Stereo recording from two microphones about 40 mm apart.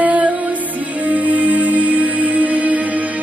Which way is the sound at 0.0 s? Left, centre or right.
Right.